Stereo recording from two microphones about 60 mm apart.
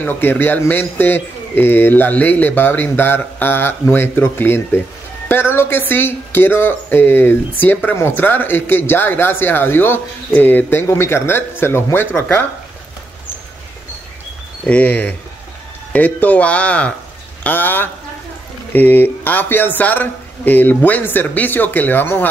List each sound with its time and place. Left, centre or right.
0.0 s a man's voice: left
10.9 s speech: left
14.7 s speech: left
17.4 s a man's voice: left